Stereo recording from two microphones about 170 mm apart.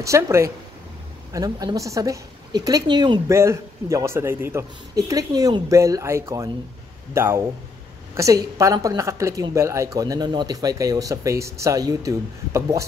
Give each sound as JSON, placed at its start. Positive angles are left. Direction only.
{"t": 0.0, "sound": "a woman's voice", "side_deg": -15}